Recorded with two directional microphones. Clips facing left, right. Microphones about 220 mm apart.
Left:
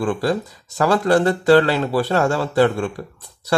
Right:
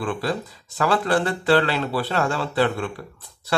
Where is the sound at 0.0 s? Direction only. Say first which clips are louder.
Left 5 dB; 45° left (ahead or behind).